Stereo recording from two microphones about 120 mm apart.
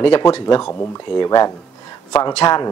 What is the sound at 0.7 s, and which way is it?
Speech, 20° left (ahead or behind).